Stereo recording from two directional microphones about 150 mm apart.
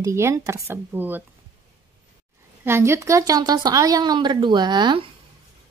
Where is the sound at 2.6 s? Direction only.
15° right (ahead or behind).